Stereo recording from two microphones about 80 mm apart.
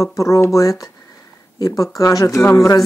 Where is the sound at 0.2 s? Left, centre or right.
Left.